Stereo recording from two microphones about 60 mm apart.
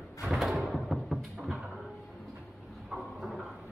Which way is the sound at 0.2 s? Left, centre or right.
Centre.